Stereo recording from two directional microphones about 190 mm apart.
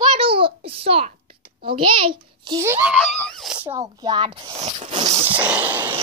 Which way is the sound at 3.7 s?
25° right (ahead or behind).